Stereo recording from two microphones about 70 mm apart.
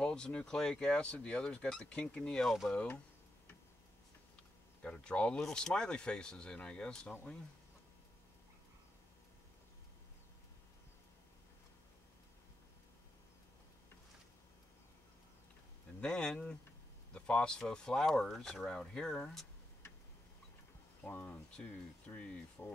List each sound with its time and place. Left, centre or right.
0.0 s speech: centre
4.8 s speech: centre
16.0 s speech: centre
21.0 s speech: left
21.3 s speech: centre